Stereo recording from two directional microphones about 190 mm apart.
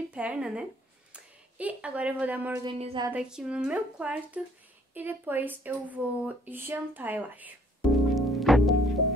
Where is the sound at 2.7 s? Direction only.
30° right (ahead or behind).